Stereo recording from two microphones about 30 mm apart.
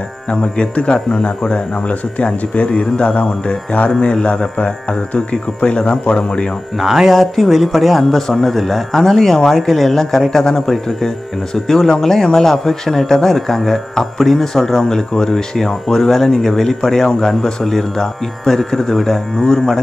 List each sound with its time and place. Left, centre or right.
1.2 s speech: left
5.3 s speech: left
6.1 s speech: left
6.8 s speech: centre
7.1 s speech: centre; by 19.7 s left